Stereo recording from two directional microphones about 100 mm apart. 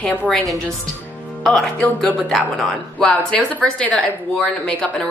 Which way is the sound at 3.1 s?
15° left (ahead or behind).